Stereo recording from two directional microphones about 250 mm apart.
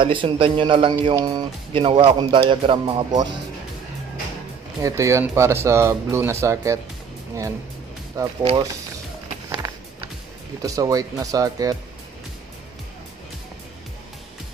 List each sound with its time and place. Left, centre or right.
0.0 s speech: centre
4.8 s speech: centre
8.2 s speech: centre
10.6 s speech: centre